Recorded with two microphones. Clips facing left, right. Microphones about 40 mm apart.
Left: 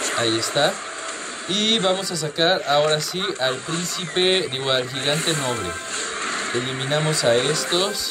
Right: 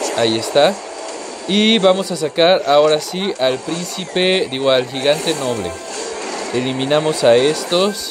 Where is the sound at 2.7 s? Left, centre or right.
Right.